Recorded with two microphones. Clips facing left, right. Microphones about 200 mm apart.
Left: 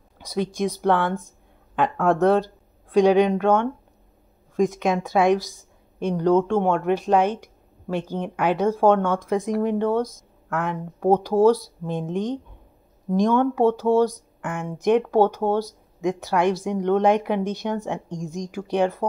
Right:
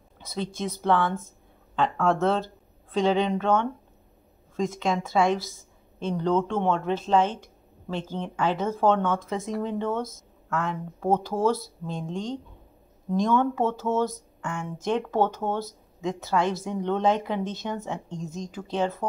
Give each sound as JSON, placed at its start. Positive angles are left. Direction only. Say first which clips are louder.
{"t": 0.2, "sound": "speech", "louder": "left 6 dB", "side_deg": 15}